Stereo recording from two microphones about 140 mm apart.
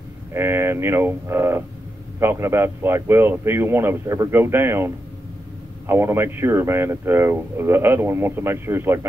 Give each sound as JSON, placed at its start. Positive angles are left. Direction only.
{"t": 0.3, "sound": "speech", "side_deg": -20}